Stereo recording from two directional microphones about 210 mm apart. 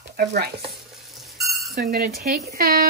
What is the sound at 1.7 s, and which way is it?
A woman's voice, 45° right (ahead or behind).